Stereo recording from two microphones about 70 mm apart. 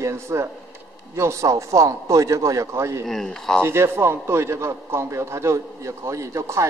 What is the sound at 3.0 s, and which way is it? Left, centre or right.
Speech, centre.